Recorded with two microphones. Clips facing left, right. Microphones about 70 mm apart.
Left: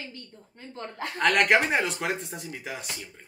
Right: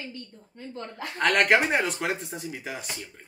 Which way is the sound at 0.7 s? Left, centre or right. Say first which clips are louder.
Left 1 dB; left.